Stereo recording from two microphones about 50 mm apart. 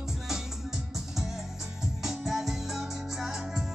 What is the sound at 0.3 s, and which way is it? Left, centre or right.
Music, centre.